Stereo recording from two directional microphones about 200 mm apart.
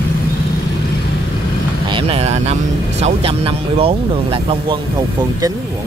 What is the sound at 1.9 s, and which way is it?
Speech, 30° right (ahead or behind).